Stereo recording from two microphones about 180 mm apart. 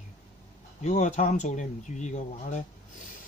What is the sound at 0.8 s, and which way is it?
Speech, 40° left (ahead or behind).